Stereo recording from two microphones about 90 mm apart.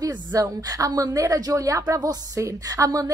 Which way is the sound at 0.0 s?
40° right (ahead or behind).